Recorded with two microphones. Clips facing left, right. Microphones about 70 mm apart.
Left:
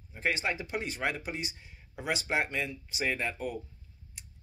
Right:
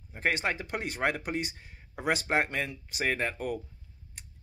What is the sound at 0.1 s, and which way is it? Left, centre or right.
Speech, right.